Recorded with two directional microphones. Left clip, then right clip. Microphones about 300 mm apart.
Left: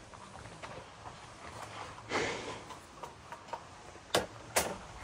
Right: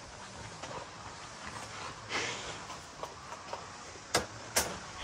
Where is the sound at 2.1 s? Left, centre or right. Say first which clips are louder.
Left 2 dB; left.